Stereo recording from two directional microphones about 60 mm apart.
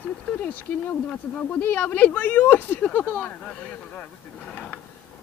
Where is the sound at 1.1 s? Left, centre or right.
Left.